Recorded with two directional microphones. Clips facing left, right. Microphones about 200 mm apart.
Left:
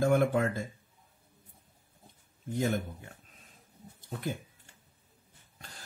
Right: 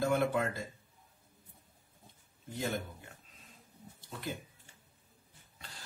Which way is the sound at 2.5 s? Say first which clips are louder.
Left 6 dB; 50° left (ahead or behind).